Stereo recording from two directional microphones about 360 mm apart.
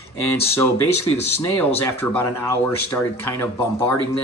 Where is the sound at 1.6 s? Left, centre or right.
Centre.